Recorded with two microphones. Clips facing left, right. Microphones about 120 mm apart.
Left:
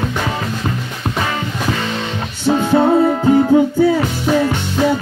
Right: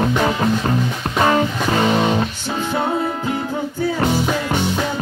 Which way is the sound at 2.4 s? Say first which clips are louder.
Left 8 dB; 35° left (ahead or behind).